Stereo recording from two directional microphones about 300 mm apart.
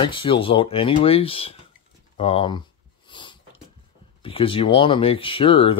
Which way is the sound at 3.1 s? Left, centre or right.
Centre.